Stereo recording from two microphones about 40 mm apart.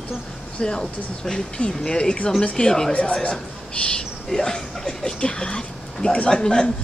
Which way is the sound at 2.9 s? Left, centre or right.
Left.